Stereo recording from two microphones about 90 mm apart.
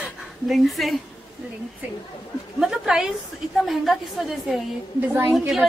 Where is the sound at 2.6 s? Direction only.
5° right (ahead or behind).